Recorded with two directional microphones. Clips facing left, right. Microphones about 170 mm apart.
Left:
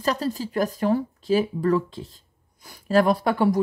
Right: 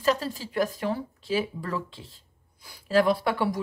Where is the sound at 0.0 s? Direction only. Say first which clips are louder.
Left 1 dB; 40° left (ahead or behind).